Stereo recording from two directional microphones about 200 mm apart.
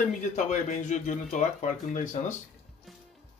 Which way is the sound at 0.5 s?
40° left (ahead or behind).